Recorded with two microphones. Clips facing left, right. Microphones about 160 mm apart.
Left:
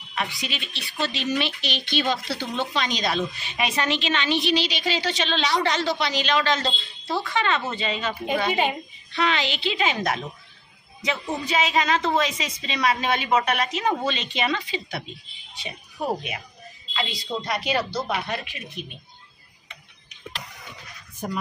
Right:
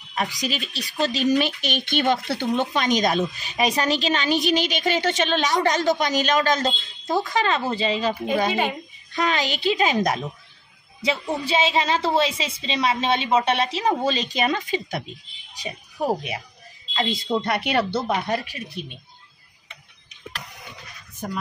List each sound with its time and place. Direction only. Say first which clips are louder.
0.1 s a woman's voice: right 4 dB; 40° right (ahead or behind)
16.9 s speech: right 6 dB; 45° right (ahead or behind)
18.0 s a woman's voice: right 4 dB; 40° right (ahead or behind)